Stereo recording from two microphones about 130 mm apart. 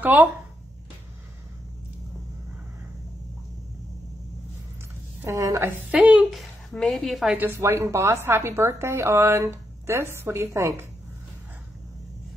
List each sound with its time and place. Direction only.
0.1 s a woman's voice: 10° right (ahead or behind)
5.2 s a woman's voice: 25° right (ahead or behind); by 7.3 s centre (ahead or behind)
7.3 s a woman's voice: 20° right (ahead or behind)